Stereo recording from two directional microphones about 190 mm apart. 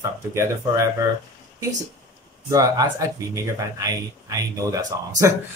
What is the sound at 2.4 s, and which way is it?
Speech, 20° right (ahead or behind).